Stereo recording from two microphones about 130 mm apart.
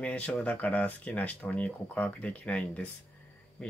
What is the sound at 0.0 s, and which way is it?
Speech, 10° left (ahead or behind).